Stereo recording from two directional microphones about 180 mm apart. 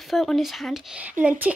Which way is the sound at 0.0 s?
Centre (ahead or behind).